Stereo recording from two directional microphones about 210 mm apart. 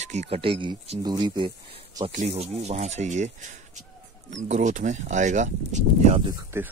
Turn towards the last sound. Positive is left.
turn(degrees=-10)  # may be behind; listen again after turning